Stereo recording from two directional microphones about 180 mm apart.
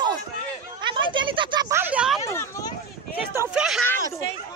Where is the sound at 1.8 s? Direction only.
5° right (ahead or behind).